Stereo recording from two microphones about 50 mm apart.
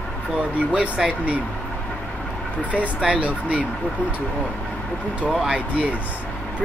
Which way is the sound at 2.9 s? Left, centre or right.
Right.